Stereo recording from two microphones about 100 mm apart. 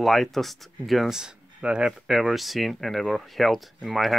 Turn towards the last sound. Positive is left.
turn(degrees=0)  # may be behind; listen again after turning